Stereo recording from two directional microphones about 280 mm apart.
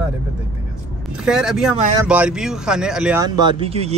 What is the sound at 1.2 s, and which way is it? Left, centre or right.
Speech, centre.